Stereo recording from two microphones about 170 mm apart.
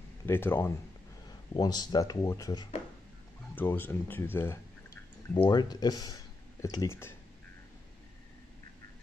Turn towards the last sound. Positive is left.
turn(degrees=15)  # may be behind; listen again after turning